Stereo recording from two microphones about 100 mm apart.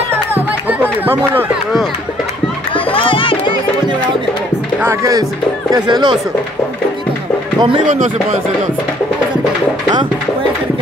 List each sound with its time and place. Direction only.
0.1 s music: 20° right (ahead or behind)
2.7 s music: 60° left (ahead or behind)
4.8 s speech: 30° right (ahead or behind)
5.7 s speech: 45° right (ahead or behind)